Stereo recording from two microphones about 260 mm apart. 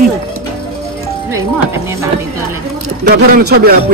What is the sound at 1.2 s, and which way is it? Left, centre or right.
Speech, centre.